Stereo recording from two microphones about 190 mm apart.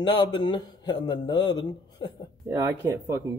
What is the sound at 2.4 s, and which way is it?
Speech, 15° right (ahead or behind).